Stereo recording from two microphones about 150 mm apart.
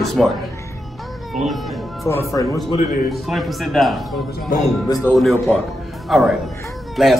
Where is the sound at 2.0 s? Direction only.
15° left (ahead or behind).